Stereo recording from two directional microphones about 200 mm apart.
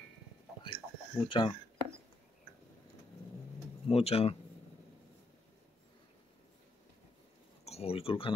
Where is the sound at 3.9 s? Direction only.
30° left (ahead or behind).